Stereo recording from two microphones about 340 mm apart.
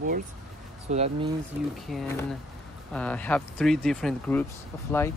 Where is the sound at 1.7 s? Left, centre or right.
Centre.